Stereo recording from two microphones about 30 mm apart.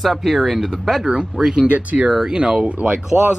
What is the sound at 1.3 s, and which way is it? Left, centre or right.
Speech, centre.